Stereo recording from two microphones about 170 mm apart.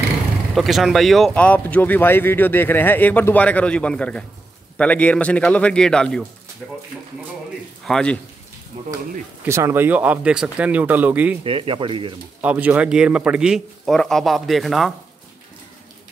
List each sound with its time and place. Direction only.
0.6 s speech: centre (ahead or behind)
7.8 s speech: 5° left (ahead or behind)
8.7 s speech: 35° right (ahead or behind)
9.4 s speech: 15° right (ahead or behind)
11.4 s speech: 30° right (ahead or behind)
12.4 s speech: 10° right (ahead or behind)